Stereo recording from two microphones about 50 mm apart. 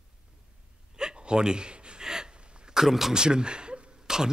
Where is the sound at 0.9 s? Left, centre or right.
Centre.